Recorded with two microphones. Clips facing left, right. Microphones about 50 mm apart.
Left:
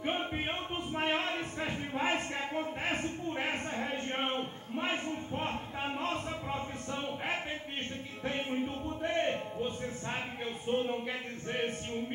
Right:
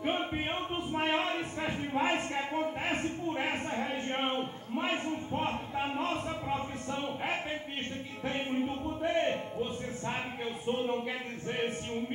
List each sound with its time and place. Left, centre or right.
0.0 s music: centre
8.3 s speech: centre